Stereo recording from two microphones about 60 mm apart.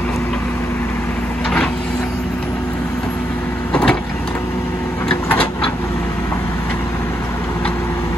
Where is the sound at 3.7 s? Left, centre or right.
Centre.